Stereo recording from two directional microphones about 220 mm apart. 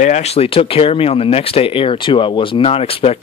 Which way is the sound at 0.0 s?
30° left (ahead or behind).